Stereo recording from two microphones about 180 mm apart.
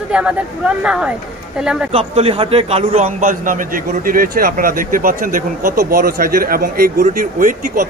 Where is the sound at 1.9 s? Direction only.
35° right (ahead or behind).